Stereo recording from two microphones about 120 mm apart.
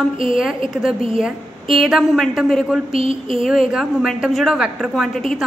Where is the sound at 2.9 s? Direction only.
55° right (ahead or behind).